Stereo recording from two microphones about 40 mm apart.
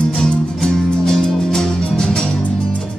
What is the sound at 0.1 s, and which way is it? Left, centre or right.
Music, centre.